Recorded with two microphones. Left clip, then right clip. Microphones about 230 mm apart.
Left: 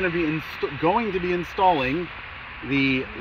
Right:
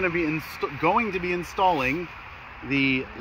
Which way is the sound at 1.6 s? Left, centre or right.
Centre.